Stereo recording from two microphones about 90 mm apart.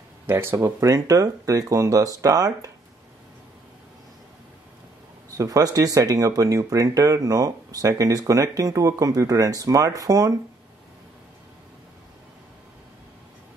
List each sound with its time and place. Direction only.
0.3 s speech: 25° right (ahead or behind)
5.4 s speech: 40° right (ahead or behind)